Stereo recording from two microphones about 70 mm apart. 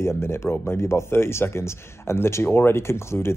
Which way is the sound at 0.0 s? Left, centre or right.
Left.